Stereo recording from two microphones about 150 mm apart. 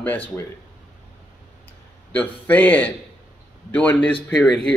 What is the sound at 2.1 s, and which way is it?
A man's voice, 10° left (ahead or behind).